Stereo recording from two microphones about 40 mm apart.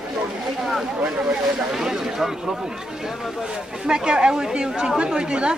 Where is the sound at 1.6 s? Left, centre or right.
Centre.